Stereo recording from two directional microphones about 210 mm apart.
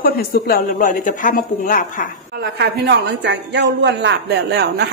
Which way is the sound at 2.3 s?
55° right (ahead or behind).